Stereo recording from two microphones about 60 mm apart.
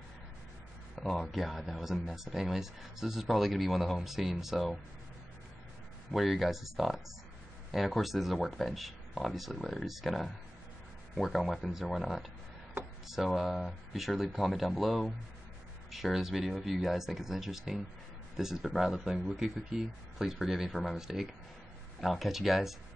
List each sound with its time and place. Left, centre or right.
0.9 s speech: centre
6.1 s speech: centre
12.8 s a sound: right
13.1 s speech: centre
20.7 s speech: centre
22.0 s speech: centre